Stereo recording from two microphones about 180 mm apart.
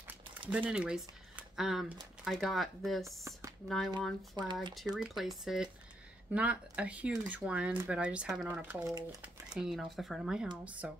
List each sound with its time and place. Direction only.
0.3 s speech: 10° right (ahead or behind)
4.4 s speech: 25° right (ahead or behind)
4.9 s speech: centre (ahead or behind)